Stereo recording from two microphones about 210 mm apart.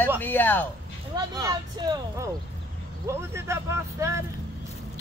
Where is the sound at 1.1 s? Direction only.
15° right (ahead or behind).